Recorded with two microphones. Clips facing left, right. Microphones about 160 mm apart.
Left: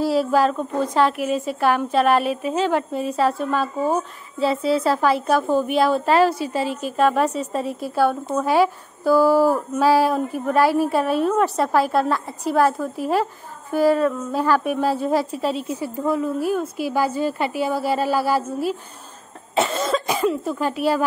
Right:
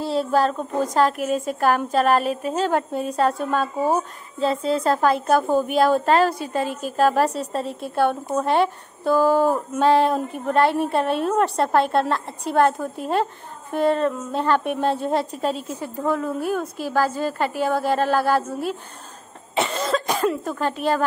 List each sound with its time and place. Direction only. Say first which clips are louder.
0.0 s speech: left 2 dB; 5° left (ahead or behind)
0.9 s a woman's voice: even; 40° right (ahead or behind)
2.7 s speech: left 1 dB; centre (ahead or behind)
5.7 s a woman's voice: right 2 dB; 45° right (ahead or behind)
7.5 s a woman's voice: left 1 dB; centre (ahead or behind)